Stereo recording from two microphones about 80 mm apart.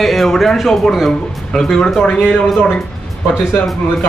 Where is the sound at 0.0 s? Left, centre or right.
Centre.